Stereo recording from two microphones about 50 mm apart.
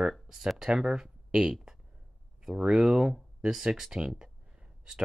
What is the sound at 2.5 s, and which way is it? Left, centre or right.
Speech, centre.